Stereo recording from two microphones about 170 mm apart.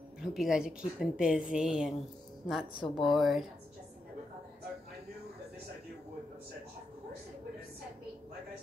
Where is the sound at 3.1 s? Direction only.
Centre (ahead or behind).